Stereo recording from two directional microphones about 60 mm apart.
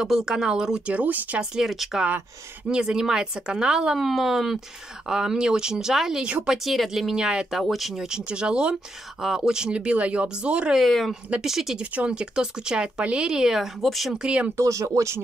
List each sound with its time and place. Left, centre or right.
0.0 s speech: centre
0.9 s speech: right
1.4 s speech: centre
4.0 s speech: centre
6.2 s speech: right
6.5 s speech: centre
10.8 s speech: centre
11.8 s speech: right; by 14.1 s centre
14.1 s speech: centre
14.6 s speech: right